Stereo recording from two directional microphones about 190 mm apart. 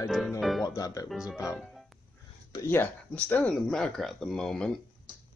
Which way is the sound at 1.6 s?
Centre (ahead or behind).